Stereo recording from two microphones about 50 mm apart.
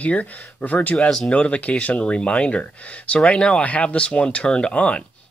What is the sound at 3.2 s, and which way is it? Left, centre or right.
Speech, centre.